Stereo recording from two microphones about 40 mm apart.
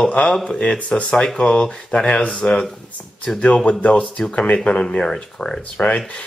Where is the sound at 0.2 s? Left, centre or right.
Centre.